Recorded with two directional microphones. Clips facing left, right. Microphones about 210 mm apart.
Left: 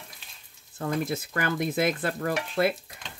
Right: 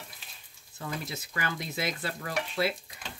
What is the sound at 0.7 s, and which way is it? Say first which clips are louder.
Speech: left 9 dB; 50° left (ahead or behind).